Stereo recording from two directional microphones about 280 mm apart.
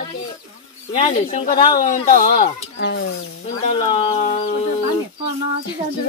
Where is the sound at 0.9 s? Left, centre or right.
Left.